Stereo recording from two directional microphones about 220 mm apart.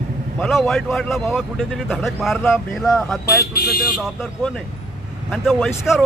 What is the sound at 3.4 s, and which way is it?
Speech, 45° left (ahead or behind).